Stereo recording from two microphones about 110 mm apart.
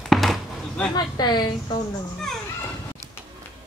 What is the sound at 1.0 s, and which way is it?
Speech, 40° left (ahead or behind).